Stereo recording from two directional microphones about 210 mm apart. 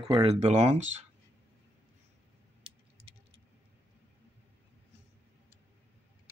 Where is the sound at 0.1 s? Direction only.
25° right (ahead or behind).